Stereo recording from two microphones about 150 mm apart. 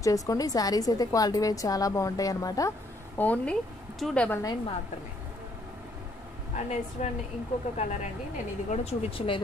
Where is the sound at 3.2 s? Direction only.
10° left (ahead or behind).